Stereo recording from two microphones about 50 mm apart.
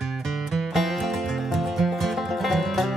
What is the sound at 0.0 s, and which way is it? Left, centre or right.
Music, centre.